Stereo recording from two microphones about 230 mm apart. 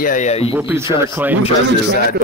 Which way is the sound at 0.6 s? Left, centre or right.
Centre.